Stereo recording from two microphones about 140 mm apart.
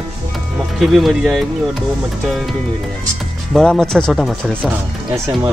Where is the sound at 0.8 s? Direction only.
Centre (ahead or behind).